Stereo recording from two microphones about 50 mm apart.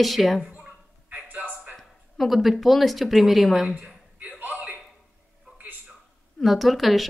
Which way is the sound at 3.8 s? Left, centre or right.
Right.